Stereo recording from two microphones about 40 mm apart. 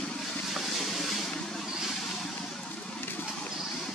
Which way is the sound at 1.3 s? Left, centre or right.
Centre.